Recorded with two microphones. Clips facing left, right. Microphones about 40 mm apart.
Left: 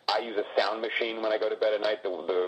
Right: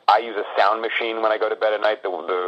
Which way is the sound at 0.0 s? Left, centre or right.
Right.